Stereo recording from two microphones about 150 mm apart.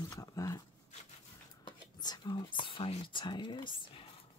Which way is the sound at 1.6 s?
30° left (ahead or behind).